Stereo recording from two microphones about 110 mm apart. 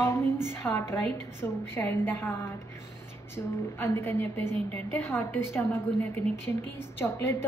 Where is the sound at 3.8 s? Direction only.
20° left (ahead or behind).